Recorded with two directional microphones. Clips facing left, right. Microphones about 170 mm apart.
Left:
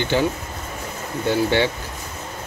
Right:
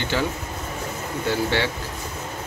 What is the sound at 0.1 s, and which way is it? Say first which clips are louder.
Speech: left 4 dB; 20° left (ahead or behind).